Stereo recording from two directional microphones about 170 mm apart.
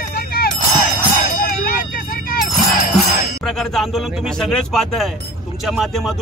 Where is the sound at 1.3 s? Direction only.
55° left (ahead or behind).